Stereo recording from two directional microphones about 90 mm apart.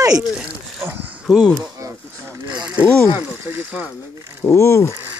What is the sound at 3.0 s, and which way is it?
Speech, 20° right (ahead or behind).